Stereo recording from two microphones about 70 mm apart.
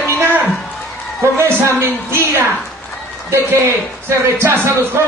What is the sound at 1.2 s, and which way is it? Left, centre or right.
A man's voice, right.